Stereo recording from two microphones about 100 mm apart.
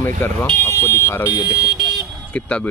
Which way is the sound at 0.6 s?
25° left (ahead or behind).